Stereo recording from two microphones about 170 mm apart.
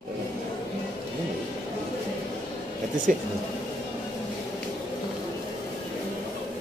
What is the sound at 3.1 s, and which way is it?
Speech, 55° right (ahead or behind).